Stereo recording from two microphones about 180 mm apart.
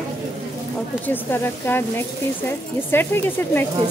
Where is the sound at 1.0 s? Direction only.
10° left (ahead or behind).